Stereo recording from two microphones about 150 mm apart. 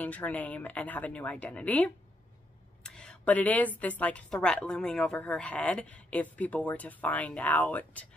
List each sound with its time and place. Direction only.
0.0 s a woman's voice: 10° left (ahead or behind)
2.8 s a sound: 5° left (ahead or behind)
3.8 s a woman's voice: 10° left (ahead or behind)